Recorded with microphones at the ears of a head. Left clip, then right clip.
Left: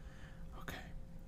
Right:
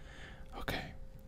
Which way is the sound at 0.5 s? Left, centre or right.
Right.